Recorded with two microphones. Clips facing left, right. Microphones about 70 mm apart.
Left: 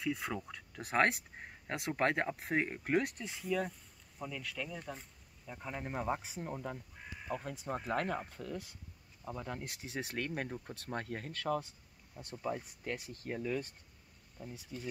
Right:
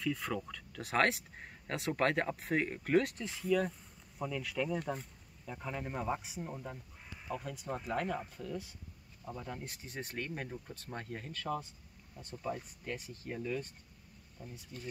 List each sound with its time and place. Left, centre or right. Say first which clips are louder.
0.0 s speech: right 1 dB; centre
0.5 s speech: right 1 dB; left
3.0 s speech: right 3 dB; centre
4.2 s speech: right 5 dB; centre
5.5 s speech: right 2 dB; centre
5.8 s speech: left 1 dB; left
7.9 s speech: even; left
9.7 s speech: left 3 dB; left
12.2 s speech: left 2 dB; left
12.6 s speech: left 1 dB; left